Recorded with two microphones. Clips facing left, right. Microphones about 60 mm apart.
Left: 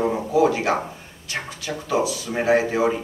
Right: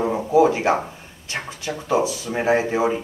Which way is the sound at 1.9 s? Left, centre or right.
Right.